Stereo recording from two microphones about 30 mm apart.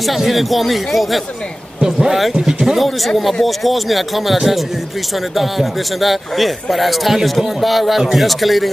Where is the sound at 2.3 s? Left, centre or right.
Right.